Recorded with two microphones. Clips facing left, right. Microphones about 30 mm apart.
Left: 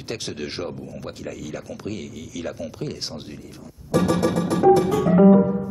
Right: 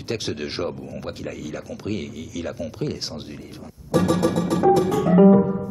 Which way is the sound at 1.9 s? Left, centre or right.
Centre.